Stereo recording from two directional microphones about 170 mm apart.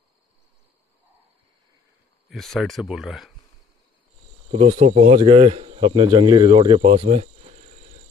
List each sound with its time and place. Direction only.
2.2 s speech: centre (ahead or behind)
4.5 s speech: 40° right (ahead or behind)